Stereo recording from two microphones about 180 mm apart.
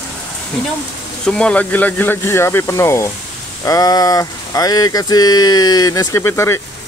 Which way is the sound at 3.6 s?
20° left (ahead or behind).